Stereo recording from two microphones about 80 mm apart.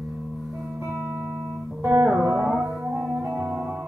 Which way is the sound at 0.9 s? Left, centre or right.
Centre.